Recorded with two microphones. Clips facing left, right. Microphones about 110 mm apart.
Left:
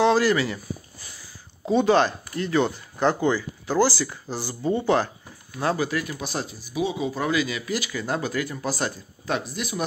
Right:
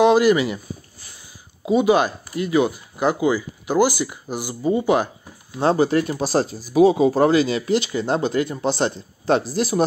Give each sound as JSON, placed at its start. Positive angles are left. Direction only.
{"t": 0.0, "sound": "speech", "side_deg": -15}
{"t": 1.7, "sound": "speech", "side_deg": -10}
{"t": 5.6, "sound": "speech", "side_deg": -30}